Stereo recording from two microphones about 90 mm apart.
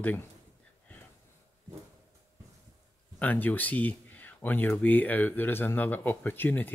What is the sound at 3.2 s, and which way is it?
Speech, 20° left (ahead or behind).